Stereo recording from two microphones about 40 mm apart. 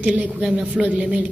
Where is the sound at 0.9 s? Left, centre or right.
Right.